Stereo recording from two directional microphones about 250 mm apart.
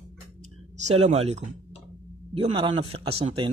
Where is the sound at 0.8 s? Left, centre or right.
Right.